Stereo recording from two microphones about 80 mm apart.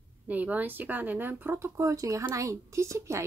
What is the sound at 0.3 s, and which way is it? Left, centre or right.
Speech, right.